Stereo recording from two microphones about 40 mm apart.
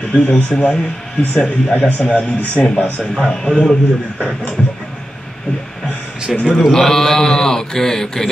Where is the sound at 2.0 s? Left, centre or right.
Left.